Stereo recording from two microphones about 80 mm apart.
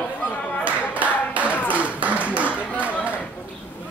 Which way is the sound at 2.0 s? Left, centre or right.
Centre.